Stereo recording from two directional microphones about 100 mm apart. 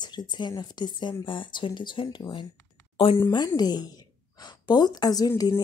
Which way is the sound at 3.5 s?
40° left (ahead or behind).